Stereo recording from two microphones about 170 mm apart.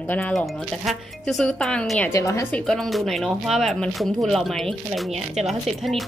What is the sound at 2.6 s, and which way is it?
Speech, centre (ahead or behind).